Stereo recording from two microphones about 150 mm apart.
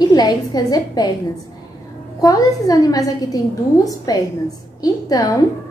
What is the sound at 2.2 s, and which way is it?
A woman's voice, 25° left (ahead or behind).